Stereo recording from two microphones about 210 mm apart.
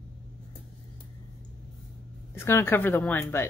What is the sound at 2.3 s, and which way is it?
Speech, 10° left (ahead or behind).